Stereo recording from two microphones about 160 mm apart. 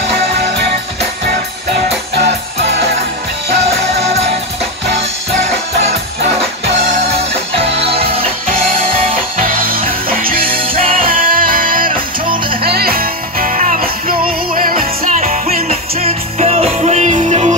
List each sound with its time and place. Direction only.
7.8 s music: 35° right (ahead or behind)
9.4 s music: 60° right (ahead or behind)
12.6 s music: 75° right (ahead or behind); by 17.6 s 45° right (ahead or behind)